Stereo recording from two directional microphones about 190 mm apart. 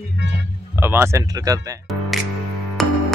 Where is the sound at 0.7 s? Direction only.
10° right (ahead or behind).